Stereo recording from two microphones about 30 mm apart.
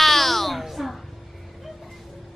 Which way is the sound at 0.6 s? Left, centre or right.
Centre.